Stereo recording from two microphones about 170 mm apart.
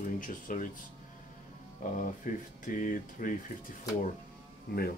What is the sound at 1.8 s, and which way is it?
Speech, 50° left (ahead or behind).